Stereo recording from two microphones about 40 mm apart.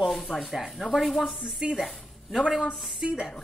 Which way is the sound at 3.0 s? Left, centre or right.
Centre.